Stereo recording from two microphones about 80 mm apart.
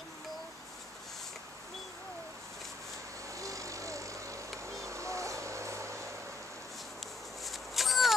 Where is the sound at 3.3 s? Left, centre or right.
Right.